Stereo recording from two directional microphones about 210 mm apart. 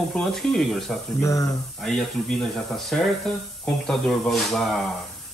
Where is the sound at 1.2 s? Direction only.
15° left (ahead or behind).